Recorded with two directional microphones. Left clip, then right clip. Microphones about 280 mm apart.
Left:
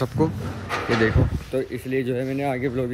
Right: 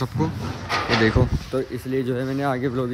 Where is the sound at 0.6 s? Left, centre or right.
Right.